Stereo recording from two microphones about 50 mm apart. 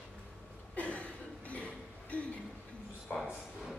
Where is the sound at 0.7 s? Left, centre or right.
Left.